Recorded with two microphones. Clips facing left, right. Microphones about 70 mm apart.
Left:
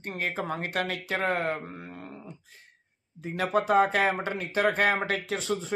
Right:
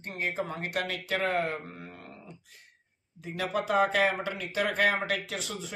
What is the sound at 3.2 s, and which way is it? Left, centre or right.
Mantra, left.